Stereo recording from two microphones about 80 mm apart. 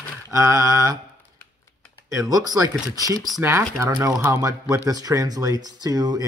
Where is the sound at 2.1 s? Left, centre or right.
Right.